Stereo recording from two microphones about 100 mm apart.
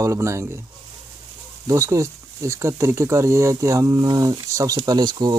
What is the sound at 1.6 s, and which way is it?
Speech, 30° right (ahead or behind).